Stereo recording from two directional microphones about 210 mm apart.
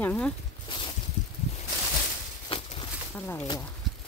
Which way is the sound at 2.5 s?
25° left (ahead or behind).